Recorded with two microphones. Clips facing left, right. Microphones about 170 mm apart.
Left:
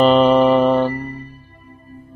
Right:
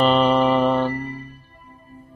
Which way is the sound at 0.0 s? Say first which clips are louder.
Left 5 dB; 50° left (ahead or behind).